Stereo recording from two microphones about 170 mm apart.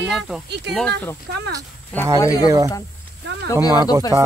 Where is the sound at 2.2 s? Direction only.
20° left (ahead or behind).